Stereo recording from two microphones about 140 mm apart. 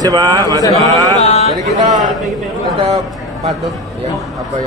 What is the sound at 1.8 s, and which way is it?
Speech, 30° right (ahead or behind).